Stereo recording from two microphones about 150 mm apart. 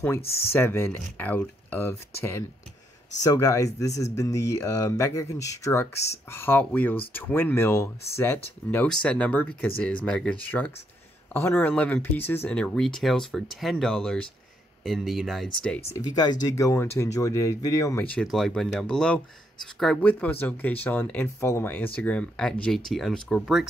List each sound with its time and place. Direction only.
0.2 s speech: 40° left (ahead or behind)
0.5 s speech: 15° left (ahead or behind)
3.3 s speech: 20° left (ahead or behind)
16.2 s speech: 25° left (ahead or behind)
18.1 s speech: centre (ahead or behind)